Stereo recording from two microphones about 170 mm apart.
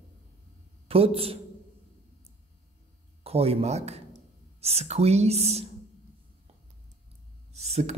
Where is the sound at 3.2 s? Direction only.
35° right (ahead or behind).